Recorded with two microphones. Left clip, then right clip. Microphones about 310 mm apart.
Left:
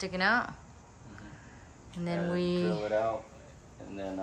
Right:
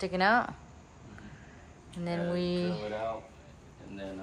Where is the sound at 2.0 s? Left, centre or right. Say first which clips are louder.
Even; centre.